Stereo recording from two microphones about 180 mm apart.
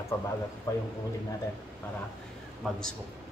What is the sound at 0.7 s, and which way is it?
Speech, 20° left (ahead or behind).